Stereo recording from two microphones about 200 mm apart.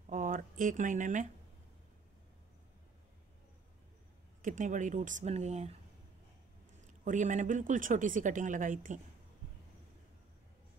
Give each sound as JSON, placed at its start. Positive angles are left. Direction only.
{"t": 0.0, "sound": "a sound", "side_deg": -40}
{"t": 4.4, "sound": "speech", "side_deg": -40}
{"t": 6.8, "sound": "speech", "side_deg": -40}